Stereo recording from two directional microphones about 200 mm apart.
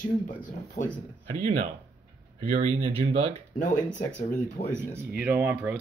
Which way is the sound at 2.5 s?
35° right (ahead or behind).